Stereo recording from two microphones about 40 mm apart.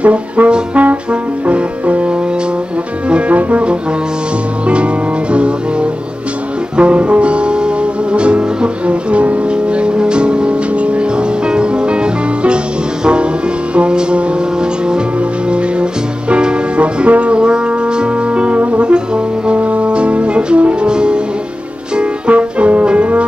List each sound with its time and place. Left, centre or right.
0.0 s brass instrument: right
1.5 s music: right
3.1 s brass instrument: right
5.3 s music: right
15.5 s music: right
18.6 s brass instrument: right
18.9 s brass instrument: right
22.3 s music: right